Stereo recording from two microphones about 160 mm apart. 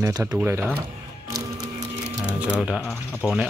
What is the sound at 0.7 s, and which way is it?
Music, 20° right (ahead or behind).